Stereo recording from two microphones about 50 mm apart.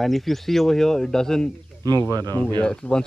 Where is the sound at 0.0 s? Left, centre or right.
Centre.